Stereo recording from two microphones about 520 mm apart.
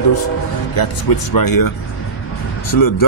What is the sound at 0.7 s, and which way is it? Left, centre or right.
Speech, left.